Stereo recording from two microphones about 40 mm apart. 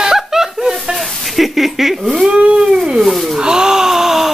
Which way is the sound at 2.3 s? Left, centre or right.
Right.